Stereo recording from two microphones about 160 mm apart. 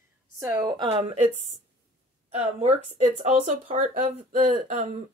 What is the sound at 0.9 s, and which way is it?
Speech, 40° right (ahead or behind).